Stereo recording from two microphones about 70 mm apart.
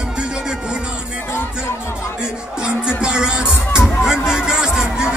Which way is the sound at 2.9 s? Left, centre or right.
Centre.